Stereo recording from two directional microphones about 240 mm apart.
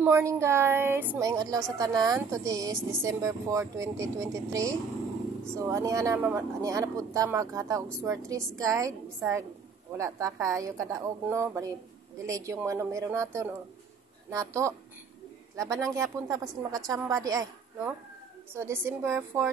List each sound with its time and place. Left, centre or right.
0.0 s speech: centre
18.5 s speech: centre